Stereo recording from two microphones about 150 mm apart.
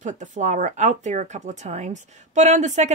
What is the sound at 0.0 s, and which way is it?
Speech, 55° right (ahead or behind).